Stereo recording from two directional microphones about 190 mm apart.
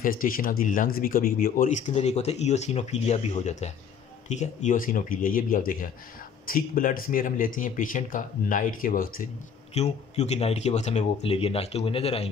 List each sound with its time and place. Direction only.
0.0 s speech: 50° left (ahead or behind)
9.8 s speech: 35° left (ahead or behind)